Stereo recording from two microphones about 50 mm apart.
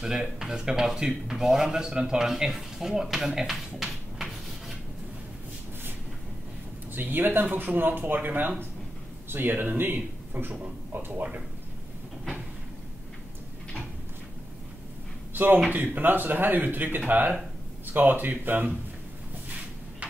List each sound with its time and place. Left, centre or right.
0.0 s speech: centre
7.0 s speech: right
15.3 s a man's voice: right